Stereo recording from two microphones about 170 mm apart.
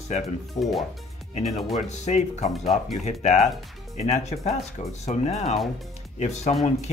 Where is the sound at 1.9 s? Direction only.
40° left (ahead or behind).